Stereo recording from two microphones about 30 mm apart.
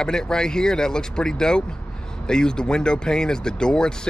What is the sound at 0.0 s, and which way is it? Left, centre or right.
Speech, left.